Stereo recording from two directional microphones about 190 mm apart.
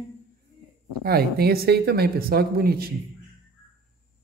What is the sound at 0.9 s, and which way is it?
Speech, 55° right (ahead or behind).